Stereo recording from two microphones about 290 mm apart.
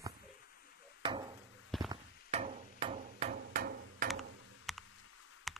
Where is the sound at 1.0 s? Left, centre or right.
Centre.